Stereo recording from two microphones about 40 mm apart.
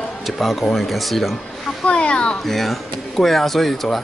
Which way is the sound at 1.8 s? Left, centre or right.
Left.